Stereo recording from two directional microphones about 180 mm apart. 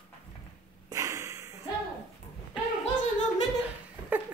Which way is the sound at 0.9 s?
20° right (ahead or behind).